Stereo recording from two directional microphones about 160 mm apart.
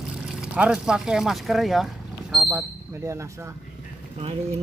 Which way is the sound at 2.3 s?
10° right (ahead or behind).